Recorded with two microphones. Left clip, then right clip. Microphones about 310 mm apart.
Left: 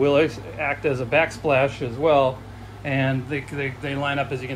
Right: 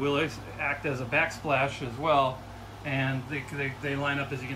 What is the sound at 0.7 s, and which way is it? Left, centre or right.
Speech, left.